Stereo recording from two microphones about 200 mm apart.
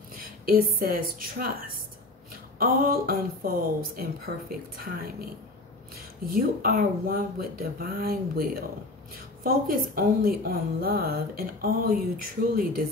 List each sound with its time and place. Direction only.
0.1 s a sound: 45° right (ahead or behind)
0.7 s a woman's voice: 45° right (ahead or behind)
6.3 s a woman's voice: 45° right (ahead or behind)